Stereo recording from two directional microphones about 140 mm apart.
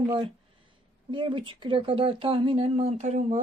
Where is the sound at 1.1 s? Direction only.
35° right (ahead or behind).